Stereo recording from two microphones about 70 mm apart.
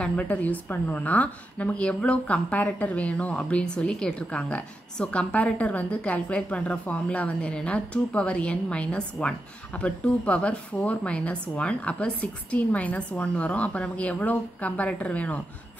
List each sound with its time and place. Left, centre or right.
0.0 s a woman's voice: centre